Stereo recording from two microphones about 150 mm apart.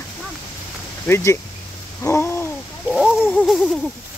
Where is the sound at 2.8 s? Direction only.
Centre (ahead or behind).